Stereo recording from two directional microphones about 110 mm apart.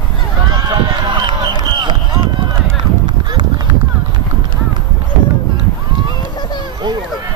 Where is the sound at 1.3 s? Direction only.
45° right (ahead or behind).